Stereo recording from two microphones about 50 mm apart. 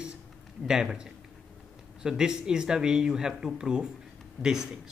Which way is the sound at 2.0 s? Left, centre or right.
Centre.